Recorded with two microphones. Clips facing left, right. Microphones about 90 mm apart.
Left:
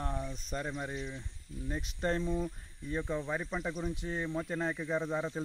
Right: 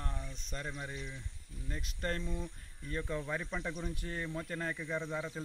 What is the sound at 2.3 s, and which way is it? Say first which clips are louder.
Speech: left 7 dB; 15° left (ahead or behind).